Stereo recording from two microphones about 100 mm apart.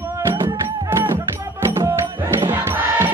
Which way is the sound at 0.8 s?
25° right (ahead or behind).